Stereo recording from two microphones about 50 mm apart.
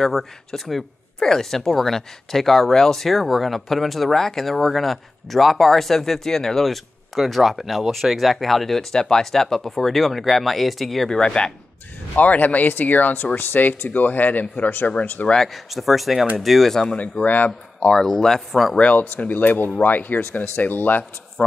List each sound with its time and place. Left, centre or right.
0.0 s speech: centre
11.1 s speech: centre
12.2 s speech: left
15.3 s speech: centre
16.9 s speech: left
17.8 s speech: centre
18.8 s speech: left
21.4 s speech: centre